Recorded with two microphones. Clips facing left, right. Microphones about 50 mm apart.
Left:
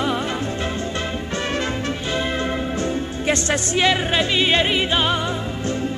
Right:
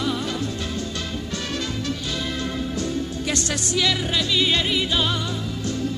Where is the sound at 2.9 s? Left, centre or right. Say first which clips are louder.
Left 4 dB; left.